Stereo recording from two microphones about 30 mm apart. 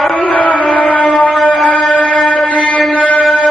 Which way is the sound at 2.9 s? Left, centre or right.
Left.